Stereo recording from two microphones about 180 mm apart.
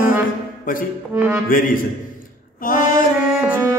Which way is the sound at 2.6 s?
50° left (ahead or behind).